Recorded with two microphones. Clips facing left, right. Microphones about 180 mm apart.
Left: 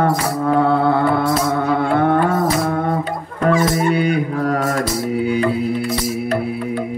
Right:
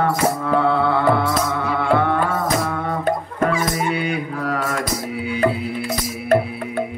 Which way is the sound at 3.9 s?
40° left (ahead or behind).